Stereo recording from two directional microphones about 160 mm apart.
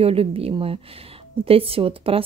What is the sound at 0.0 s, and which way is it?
Speech, 35° right (ahead or behind).